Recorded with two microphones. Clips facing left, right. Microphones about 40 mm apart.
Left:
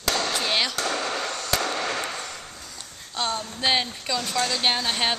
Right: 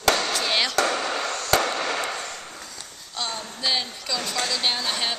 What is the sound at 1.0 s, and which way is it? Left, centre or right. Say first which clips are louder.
Chop: right 1 dB; centre.